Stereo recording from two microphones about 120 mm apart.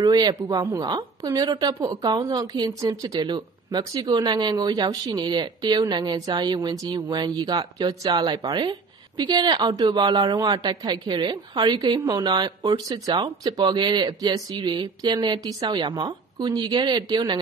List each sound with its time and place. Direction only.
0.0 s a woman's voice: 35° right (ahead or behind)